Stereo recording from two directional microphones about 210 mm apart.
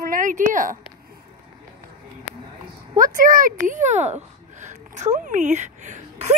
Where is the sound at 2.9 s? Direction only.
40° right (ahead or behind).